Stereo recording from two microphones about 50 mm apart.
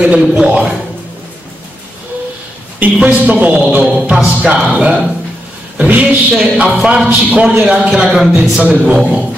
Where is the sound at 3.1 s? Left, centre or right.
Right.